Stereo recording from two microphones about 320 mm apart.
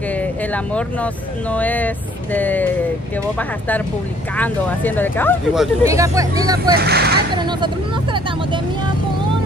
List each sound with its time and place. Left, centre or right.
0.1 s speech: centre
6.7 s speech: right
7.3 s vehicle: centre